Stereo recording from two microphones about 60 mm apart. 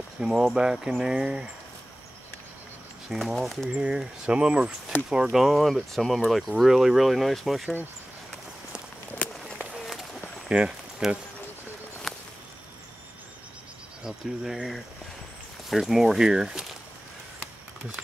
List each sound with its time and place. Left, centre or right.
0.2 s speech: centre
3.1 s speech: centre
3.7 s speech: centre
5.4 s speech: centre
10.5 s speech: centre
12.1 s a sound: centre
14.0 s speech: centre